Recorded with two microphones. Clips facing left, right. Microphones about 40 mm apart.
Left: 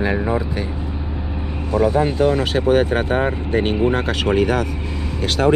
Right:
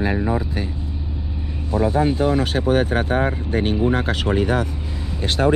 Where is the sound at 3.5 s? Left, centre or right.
Left.